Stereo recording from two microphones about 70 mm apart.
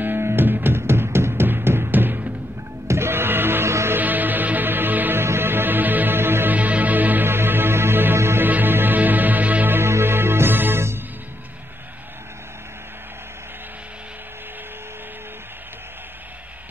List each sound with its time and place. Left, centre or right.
0.0 s music: right
4.0 s music: right